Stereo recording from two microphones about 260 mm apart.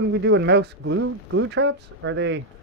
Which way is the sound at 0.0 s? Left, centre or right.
Right.